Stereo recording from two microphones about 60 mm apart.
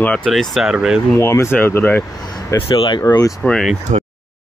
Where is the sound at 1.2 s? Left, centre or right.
Left.